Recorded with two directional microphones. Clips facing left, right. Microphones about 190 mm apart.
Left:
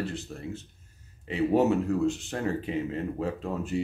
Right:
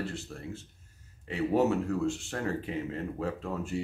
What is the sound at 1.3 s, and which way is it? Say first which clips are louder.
Speech: left 3 dB; 20° left (ahead or behind).